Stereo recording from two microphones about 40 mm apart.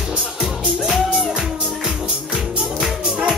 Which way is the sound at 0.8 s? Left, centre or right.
Centre.